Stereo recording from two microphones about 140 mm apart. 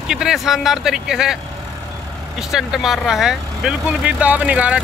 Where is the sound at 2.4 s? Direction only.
5° right (ahead or behind).